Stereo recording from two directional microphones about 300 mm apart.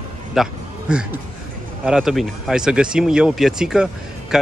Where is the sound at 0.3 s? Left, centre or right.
Centre.